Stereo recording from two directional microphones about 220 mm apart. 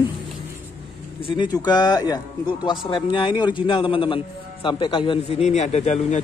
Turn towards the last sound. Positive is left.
turn(degrees=30)  # may be behind; listen again after turning